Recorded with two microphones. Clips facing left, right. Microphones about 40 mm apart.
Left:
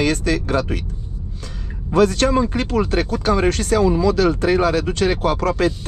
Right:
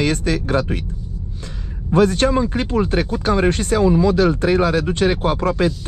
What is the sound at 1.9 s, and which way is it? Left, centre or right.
Speech, right.